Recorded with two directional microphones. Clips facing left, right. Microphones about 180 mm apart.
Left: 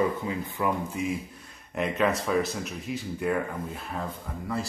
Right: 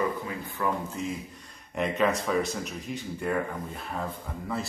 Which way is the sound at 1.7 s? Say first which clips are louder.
Even; centre (ahead or behind).